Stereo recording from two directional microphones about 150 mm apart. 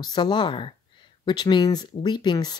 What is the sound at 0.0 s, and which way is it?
Speech, 30° left (ahead or behind).